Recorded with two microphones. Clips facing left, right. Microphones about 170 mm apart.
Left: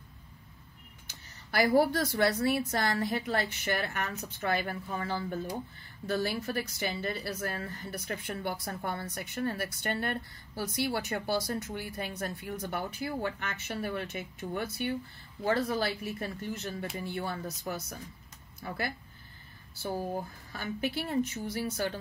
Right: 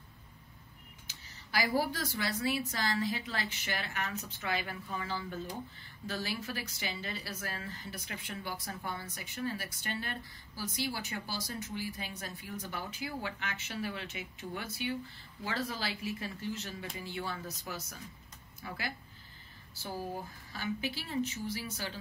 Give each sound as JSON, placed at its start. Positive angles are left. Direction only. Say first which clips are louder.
{"t": 1.0, "sound": "speech", "louder": "left 2 dB", "side_deg": 60}
{"t": 20.5, "sound": "speech", "louder": "left 3 dB", "side_deg": 55}